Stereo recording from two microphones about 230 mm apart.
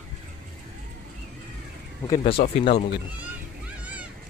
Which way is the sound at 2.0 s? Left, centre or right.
Left.